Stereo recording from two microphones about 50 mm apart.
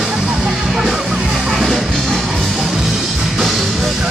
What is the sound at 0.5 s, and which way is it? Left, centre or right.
Music, centre.